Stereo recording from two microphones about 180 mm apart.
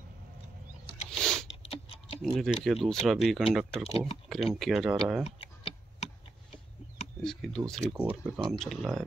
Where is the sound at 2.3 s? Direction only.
Centre (ahead or behind).